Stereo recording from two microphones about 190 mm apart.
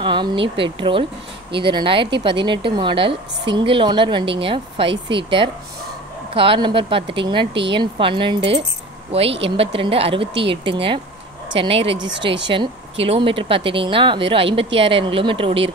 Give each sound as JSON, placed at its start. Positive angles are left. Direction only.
{"t": 0.0, "sound": "speech", "side_deg": -25}